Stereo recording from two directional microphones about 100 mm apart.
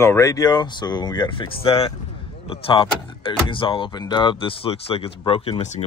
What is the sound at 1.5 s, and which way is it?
Speech, 70° left (ahead or behind).